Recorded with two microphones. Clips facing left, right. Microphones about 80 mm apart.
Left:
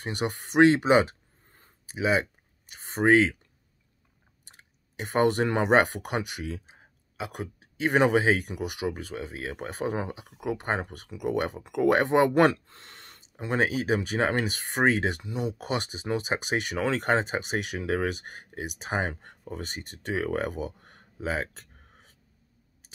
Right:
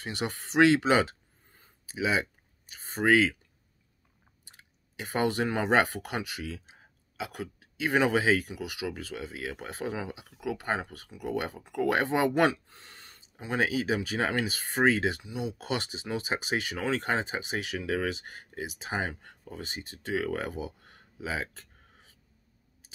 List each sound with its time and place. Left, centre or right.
0.0 s speech: left
1.5 s a sound: left
3.0 s speech: left
4.9 s speech: left
5.7 s speech: left
8.8 s speech: left
12.4 s a sound: left
13.5 s speech: left
15.0 s speech: left
15.6 s speech: left
16.3 s speech: left
17.7 s speech: left
20.2 s speech: left